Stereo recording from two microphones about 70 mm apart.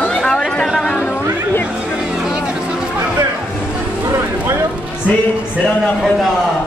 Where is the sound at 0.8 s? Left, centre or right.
Left.